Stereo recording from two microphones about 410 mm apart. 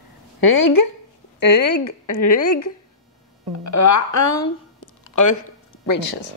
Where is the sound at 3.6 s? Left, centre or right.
Left.